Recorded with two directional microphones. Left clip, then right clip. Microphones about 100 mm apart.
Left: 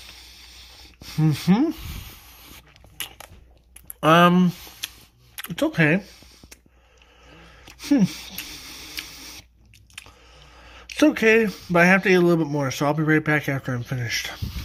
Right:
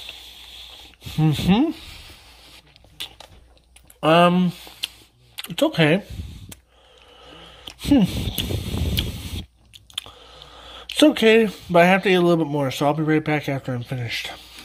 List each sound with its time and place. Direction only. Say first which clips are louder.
0.0 s hiss: right 6 dB; 30° right (ahead or behind)
0.3 s hiss: right 5 dB; 30° left (ahead or behind)
1.1 s speech: right 2 dB; 30° right (ahead or behind)
4.0 s speech: even; 5° right (ahead or behind)
4.8 s a sound: right 5 dB; 10° right (ahead or behind)
5.6 s speech: right 2 dB; 30° right (ahead or behind)
7.2 s a sound: right 7 dB; 35° right (ahead or behind)
9.9 s speech: right 9 dB; 40° right (ahead or behind); by 13.6 s 15° right (ahead or behind)
13.6 s speech: right 1 dB; 5° right (ahead or behind)